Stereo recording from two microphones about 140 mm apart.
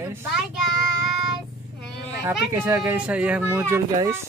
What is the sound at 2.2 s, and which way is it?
Speech, 15° right (ahead or behind).